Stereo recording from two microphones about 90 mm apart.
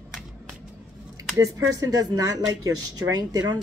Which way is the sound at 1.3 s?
45° right (ahead or behind).